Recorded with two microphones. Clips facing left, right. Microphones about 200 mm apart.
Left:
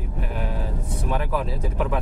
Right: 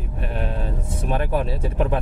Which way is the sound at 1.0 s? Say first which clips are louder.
Right 3 dB; 25° right (ahead or behind).